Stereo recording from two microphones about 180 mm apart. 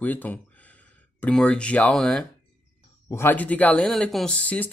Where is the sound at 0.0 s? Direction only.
10° left (ahead or behind).